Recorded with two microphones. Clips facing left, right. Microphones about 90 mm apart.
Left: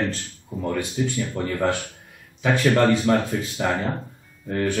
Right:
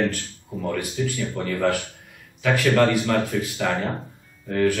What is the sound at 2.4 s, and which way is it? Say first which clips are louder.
Speech: even; 25° left (ahead or behind).